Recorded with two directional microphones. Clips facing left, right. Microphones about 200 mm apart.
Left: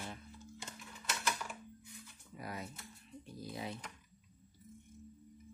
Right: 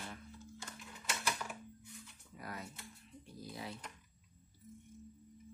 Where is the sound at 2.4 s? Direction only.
20° left (ahead or behind).